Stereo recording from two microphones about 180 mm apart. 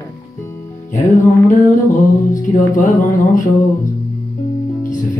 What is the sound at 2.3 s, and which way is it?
Mantra, 45° left (ahead or behind).